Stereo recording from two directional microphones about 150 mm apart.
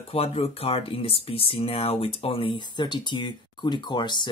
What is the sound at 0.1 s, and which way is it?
Speech, 40° left (ahead or behind).